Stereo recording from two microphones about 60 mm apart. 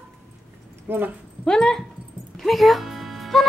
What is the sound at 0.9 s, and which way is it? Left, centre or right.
Speech, right.